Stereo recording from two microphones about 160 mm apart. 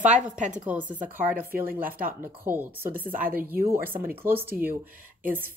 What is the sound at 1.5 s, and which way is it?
Speech, 65° right (ahead or behind).